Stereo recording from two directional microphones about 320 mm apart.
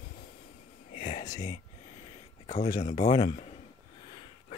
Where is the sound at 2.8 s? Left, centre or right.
Left.